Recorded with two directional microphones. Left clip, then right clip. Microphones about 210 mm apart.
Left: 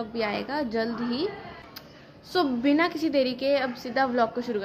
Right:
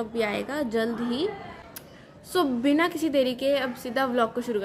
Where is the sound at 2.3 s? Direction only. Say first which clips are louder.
Even; centre (ahead or behind).